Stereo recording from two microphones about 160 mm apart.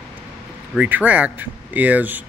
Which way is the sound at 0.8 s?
10° right (ahead or behind).